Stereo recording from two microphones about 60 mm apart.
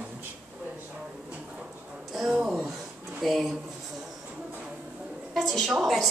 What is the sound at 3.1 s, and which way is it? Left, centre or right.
Speech, centre.